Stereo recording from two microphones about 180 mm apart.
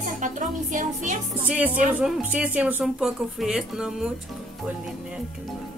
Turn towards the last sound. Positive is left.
turn(degrees=-5)  # may be behind; listen again after turning